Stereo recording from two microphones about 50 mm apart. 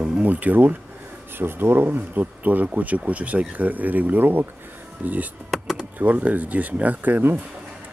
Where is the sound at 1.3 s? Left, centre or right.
Right.